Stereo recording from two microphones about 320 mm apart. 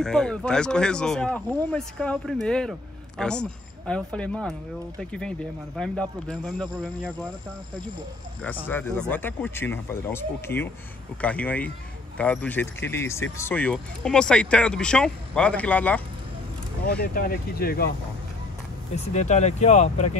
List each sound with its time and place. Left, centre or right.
0.0 s speech: centre
5.8 s speech: centre
8.5 s speech: centre
17.0 s speech: left
18.9 s speech: left